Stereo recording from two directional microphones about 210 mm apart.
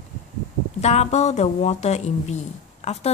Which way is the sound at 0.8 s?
30° left (ahead or behind).